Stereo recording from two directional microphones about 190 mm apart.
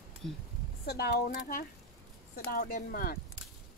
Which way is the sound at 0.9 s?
55° left (ahead or behind).